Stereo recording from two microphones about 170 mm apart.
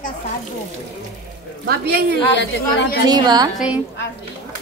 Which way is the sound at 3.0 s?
25° right (ahead or behind).